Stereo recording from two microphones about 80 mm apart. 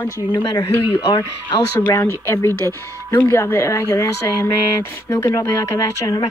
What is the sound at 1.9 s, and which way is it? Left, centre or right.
Speech, left.